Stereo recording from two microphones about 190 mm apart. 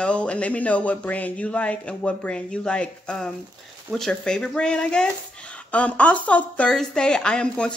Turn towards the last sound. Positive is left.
turn(degrees=5)  # may be behind; listen again after turning